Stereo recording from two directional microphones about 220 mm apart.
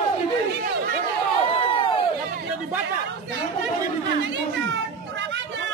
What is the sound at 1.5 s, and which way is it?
Crowd, 25° left (ahead or behind).